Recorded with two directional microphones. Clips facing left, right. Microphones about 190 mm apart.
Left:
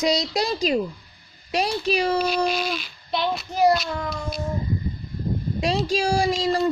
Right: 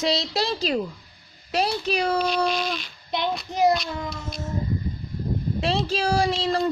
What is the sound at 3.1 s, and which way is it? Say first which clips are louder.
Child singing: left 2 dB; 20° right (ahead or behind).